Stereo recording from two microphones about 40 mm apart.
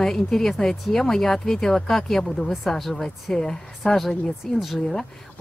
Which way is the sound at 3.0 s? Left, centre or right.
Centre.